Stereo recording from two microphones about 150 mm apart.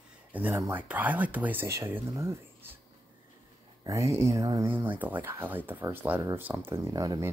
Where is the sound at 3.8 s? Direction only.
20° right (ahead or behind).